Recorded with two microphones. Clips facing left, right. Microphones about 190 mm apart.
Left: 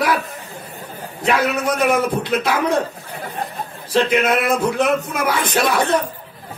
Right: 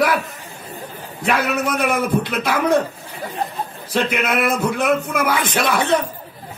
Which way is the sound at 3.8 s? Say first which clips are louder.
Left 4 dB; 55° right (ahead or behind).